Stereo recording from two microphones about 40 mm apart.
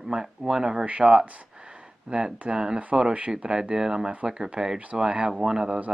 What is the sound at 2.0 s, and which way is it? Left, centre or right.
Speech, right.